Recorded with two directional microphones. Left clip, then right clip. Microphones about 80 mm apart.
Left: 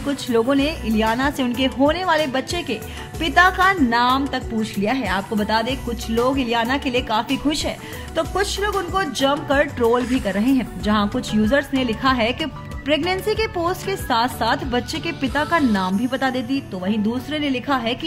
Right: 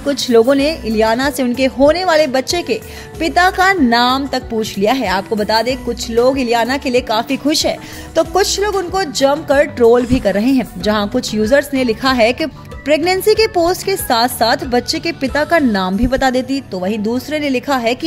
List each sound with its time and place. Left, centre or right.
0.0 s a woman's voice: right
3.9 s speech: right
4.6 s a woman's voice: right
5.1 s a woman's voice: right
7.2 s a woman's voice: right
8.9 s speech: right
9.8 s a woman's voice: right
15.7 s speech: right